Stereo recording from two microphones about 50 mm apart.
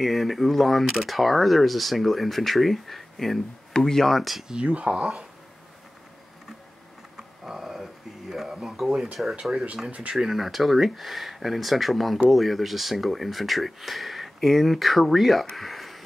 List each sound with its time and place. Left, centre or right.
0.0 s speech: centre
4.9 s speech: centre
7.2 s radio: centre
9.0 s speech: centre
9.3 s speech: centre
10.1 s speech: centre
15.5 s a sound: centre